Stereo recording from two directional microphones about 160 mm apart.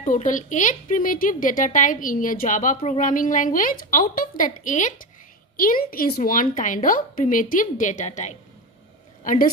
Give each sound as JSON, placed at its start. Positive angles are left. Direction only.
{"t": 0.0, "sound": "speech", "side_deg": 55}
{"t": 5.6, "sound": "a woman's voice", "side_deg": 65}